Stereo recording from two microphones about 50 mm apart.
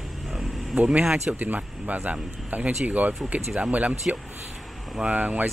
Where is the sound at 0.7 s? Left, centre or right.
Right.